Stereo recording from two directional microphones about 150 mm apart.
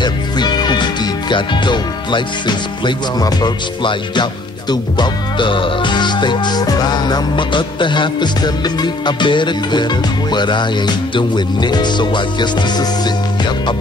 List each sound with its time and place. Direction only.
0.0 s music: 30° left (ahead or behind)